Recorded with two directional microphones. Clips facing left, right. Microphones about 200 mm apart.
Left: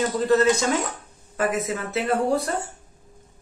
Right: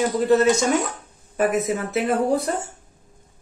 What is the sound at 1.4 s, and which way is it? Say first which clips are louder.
A man's voice: right 4 dB; 20° right (ahead or behind).